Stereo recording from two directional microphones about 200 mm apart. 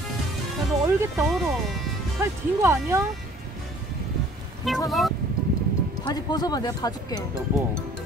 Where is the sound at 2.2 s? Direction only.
15° right (ahead or behind).